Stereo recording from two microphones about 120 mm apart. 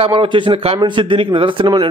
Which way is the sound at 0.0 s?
45° right (ahead or behind).